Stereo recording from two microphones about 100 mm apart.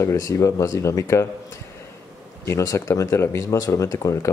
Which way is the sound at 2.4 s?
30° left (ahead or behind).